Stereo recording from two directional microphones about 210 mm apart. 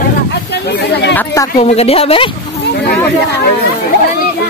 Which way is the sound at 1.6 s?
30° left (ahead or behind).